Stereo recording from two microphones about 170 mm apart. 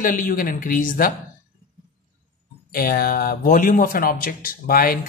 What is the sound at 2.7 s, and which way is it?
A woman's voice, 65° left (ahead or behind).